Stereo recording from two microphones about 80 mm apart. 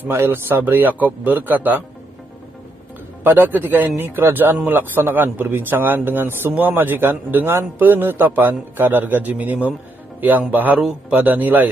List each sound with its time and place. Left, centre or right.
0.1 s a man's voice: right
3.3 s a man's voice: right